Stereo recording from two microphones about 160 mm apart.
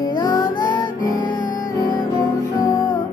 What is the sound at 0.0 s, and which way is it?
Music, 25° left (ahead or behind).